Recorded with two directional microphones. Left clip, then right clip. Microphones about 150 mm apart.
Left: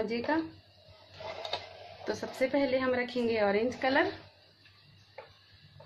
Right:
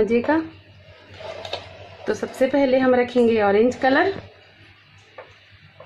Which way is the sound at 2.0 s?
40° right (ahead or behind).